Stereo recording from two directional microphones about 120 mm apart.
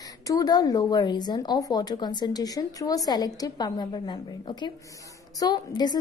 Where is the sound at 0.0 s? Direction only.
30° left (ahead or behind).